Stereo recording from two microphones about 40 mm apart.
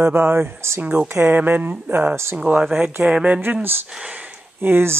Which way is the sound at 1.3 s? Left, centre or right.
Right.